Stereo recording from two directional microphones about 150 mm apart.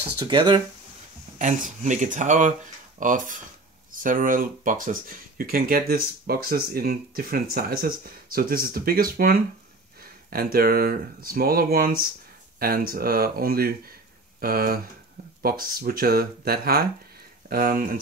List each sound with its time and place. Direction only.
0.2 s speech: 30° right (ahead or behind)
1.4 s speech: 55° right (ahead or behind); by 9.4 s 75° right (ahead or behind)
10.3 s speech: 85° right
17.5 s speech: 70° right (ahead or behind)